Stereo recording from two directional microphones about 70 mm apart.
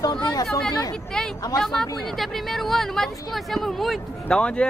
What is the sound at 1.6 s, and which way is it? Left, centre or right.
Speech, centre.